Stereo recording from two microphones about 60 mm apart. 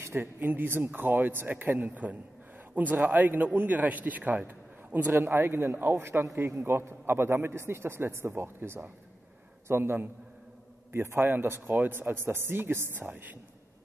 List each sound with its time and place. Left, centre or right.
0.0 s a man's voice: right
4.5 s a sound: right
5.2 s a man's voice: right